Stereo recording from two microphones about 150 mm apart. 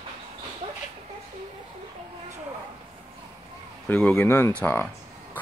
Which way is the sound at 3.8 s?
10° left (ahead or behind).